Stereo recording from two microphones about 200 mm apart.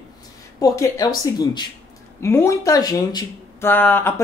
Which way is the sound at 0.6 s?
15° left (ahead or behind).